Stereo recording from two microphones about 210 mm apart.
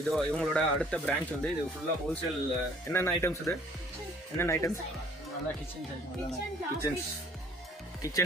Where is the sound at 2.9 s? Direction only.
10° left (ahead or behind).